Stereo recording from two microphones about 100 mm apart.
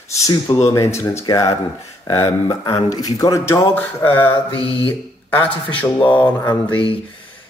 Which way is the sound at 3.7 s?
20° left (ahead or behind).